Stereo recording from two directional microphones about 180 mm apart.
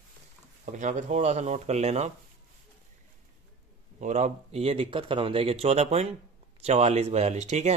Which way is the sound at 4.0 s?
40° right (ahead or behind).